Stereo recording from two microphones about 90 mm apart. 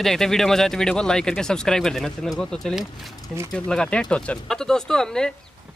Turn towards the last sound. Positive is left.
turn(degrees=5)  # may be behind; listen again after turning